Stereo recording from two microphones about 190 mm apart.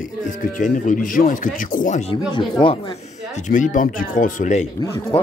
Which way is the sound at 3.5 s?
45° left (ahead or behind).